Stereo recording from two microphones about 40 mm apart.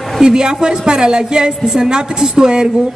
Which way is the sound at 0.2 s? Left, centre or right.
Centre.